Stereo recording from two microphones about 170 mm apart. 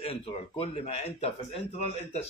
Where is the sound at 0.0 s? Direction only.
35° left (ahead or behind).